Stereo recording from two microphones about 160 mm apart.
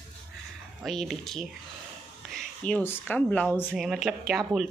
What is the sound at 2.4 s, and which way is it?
Whispering, 5° left (ahead or behind).